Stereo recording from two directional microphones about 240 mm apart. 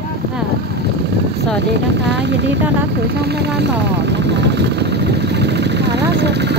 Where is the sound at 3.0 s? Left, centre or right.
Right.